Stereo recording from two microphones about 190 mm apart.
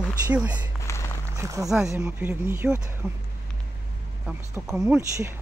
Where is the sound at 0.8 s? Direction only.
15° left (ahead or behind).